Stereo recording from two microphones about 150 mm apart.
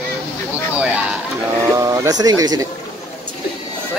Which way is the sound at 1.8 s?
25° right (ahead or behind).